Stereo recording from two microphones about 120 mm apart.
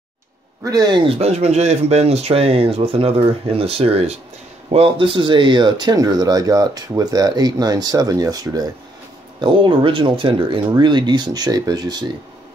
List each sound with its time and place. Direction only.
0.7 s speech: 35° right (ahead or behind)
9.4 s speech: 45° right (ahead or behind)